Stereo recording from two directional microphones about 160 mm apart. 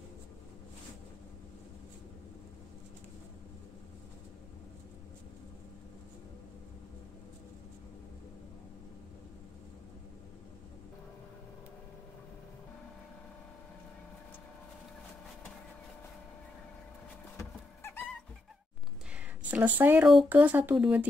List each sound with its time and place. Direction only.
17.4 s vehicle: 15° left (ahead or behind)
19.1 s speech: 10° right (ahead or behind)